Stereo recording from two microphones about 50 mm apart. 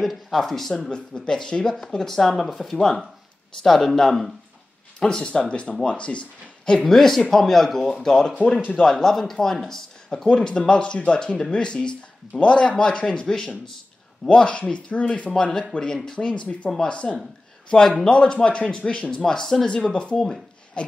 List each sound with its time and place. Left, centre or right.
0.0 s speech: centre
0.7 s speech: left
6.9 s speech: centre
14.3 s speech: centre
15.3 s speech: centre
17.6 s speech: centre
20.8 s a sound: centre